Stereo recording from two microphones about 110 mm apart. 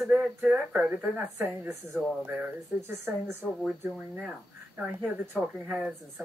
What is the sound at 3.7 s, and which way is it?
Speech, 5° right (ahead or behind).